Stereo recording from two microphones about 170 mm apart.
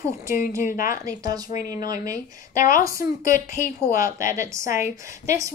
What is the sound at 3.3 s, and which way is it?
A woman's voice, 50° left (ahead or behind).